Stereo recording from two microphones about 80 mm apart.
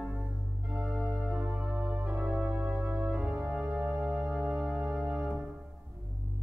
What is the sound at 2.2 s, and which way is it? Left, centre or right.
Organ, centre.